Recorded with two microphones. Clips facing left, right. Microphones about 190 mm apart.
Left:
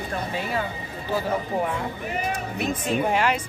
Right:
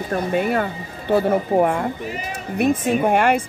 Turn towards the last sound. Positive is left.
turn(degrees=-55)  # may be behind; listen again after turning